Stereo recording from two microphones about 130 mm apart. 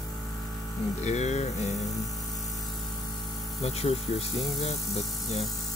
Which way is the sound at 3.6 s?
50° left (ahead or behind).